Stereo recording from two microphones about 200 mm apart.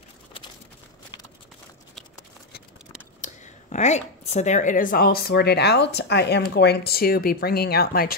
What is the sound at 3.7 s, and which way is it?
A woman's voice, 35° left (ahead or behind).